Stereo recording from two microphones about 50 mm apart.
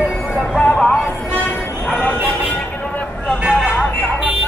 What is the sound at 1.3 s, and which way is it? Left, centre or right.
Vehicle, left.